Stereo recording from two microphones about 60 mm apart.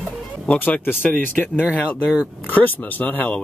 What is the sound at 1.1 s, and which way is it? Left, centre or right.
Speech, left.